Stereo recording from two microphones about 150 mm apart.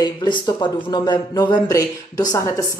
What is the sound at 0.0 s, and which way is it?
Speech, 30° left (ahead or behind).